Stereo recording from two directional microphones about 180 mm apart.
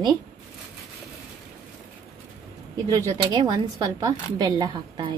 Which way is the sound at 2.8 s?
20° right (ahead or behind).